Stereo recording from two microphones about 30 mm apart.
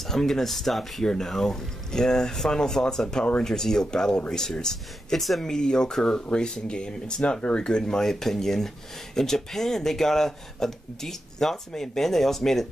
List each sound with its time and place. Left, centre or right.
0.0 s speech: centre
1.0 s speech: left